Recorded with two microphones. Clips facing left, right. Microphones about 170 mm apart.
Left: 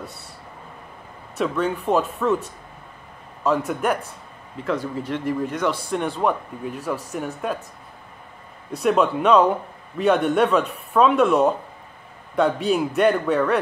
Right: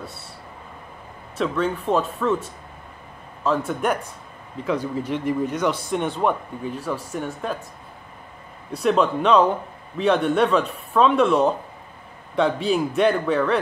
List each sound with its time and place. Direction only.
1.4 s a man's voice: 10° left (ahead or behind)
3.4 s speech: 5° left (ahead or behind)
8.8 s a man's voice: 5° left (ahead or behind)